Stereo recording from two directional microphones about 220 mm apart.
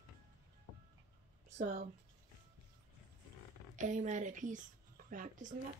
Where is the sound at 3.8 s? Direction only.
35° right (ahead or behind).